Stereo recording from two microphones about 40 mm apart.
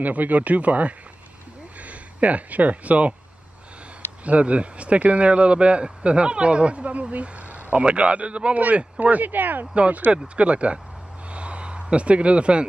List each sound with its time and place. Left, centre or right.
0.0 s speech: right
4.2 s speech: right
8.5 s speech: right
9.8 s speech: right
10.1 s speech: right
11.3 s a sound: right